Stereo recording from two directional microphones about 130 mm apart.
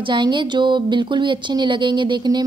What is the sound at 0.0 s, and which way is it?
A woman's voice, 35° right (ahead or behind).